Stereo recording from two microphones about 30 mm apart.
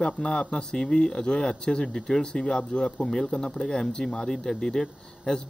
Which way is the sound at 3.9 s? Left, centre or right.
Left.